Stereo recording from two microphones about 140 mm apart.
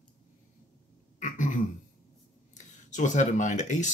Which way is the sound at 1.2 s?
65° left (ahead or behind).